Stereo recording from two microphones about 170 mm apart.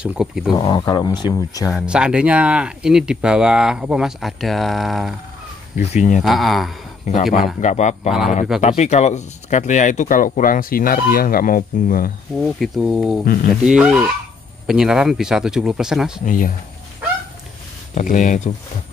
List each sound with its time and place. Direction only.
0.0 s speech: 5° right (ahead or behind)
0.6 s speech: 25° left (ahead or behind)
1.7 s speech: 5° right (ahead or behind)
5.8 s speech: 45° left (ahead or behind)
6.2 s speech: centre (ahead or behind)
7.6 s speech: 45° left (ahead or behind)
12.4 s speech: centre (ahead or behind)
13.2 s speech: 60° left (ahead or behind)
13.7 s speech: 5° right (ahead or behind)
16.3 s speech: 55° left (ahead or behind)
17.9 s speech: 50° left (ahead or behind)